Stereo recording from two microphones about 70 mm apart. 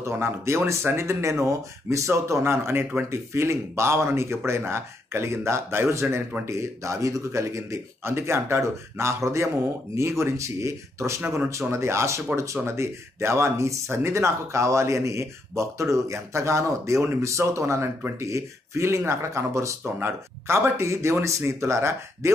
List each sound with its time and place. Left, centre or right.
0.0 s speech: right
19.8 s speech: right